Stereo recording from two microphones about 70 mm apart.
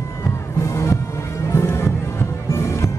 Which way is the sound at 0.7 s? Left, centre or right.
Left.